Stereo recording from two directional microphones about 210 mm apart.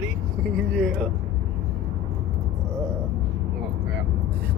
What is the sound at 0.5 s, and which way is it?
Speech, centre (ahead or behind).